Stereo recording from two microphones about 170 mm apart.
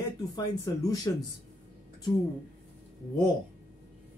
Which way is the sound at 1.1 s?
20° left (ahead or behind).